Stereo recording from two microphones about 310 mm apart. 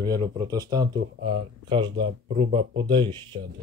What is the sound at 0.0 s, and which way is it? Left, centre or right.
Speech, centre.